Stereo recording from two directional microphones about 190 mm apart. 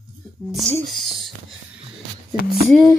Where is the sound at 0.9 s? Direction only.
Centre (ahead or behind).